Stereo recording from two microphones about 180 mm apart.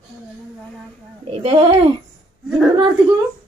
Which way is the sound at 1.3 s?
30° right (ahead or behind).